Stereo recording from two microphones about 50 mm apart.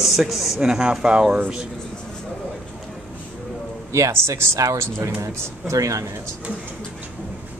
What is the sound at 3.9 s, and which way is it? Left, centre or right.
Speech, right.